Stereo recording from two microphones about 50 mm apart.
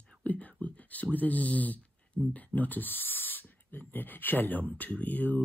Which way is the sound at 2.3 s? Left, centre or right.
Left.